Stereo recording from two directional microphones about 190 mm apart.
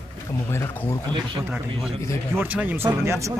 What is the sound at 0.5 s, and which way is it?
Speech, 15° left (ahead or behind).